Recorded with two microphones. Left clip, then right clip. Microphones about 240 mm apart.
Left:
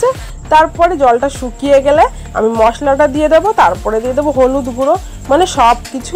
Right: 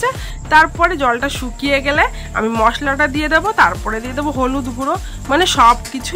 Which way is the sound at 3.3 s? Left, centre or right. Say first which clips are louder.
Left 2 dB; centre.